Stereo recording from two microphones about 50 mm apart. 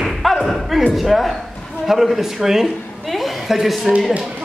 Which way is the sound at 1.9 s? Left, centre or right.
Centre.